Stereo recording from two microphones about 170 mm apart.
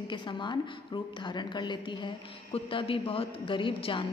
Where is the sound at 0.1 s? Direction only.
30° left (ahead or behind).